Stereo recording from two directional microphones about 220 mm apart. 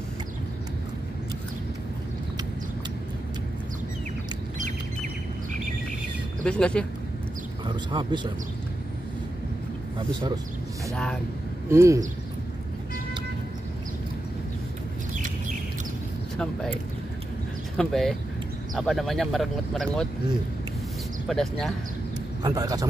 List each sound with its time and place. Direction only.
6.4 s speech: 5° left (ahead or behind)
7.6 s speech: 20° right (ahead or behind)
9.9 s speech: 20° right (ahead or behind)
11.7 s speech: 15° right (ahead or behind)
17.7 s speech: centre (ahead or behind)
21.3 s speech: centre (ahead or behind)
22.4 s speech: 15° right (ahead or behind)